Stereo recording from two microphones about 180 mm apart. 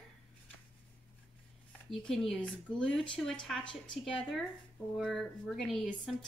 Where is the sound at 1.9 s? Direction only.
Centre (ahead or behind).